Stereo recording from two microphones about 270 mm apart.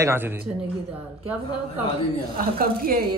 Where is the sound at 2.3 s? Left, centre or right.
Right.